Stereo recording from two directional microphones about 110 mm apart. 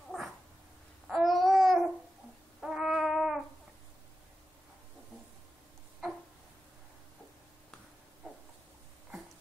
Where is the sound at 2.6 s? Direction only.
5° right (ahead or behind).